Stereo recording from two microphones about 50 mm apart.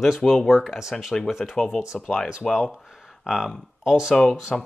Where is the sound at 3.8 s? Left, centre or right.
Centre.